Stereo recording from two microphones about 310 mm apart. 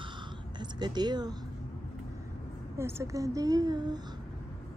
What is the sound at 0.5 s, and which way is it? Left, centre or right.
Speech, centre.